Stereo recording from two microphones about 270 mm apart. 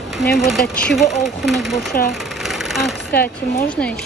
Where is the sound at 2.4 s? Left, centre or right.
Centre.